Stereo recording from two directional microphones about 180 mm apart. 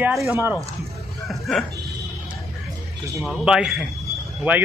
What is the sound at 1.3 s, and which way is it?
Sheep, centre (ahead or behind).